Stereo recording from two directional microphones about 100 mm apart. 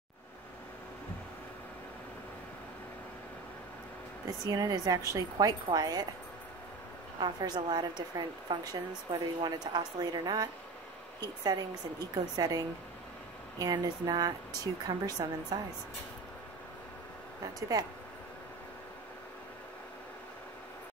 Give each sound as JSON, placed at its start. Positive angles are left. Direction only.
{"t": 4.5, "sound": "a woman's voice", "side_deg": -40}
{"t": 7.2, "sound": "a woman's voice", "side_deg": -45}
{"t": 17.6, "sound": "a woman's voice", "side_deg": -40}